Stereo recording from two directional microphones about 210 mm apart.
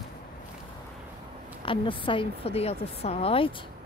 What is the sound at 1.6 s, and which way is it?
A woman's voice, 25° left (ahead or behind).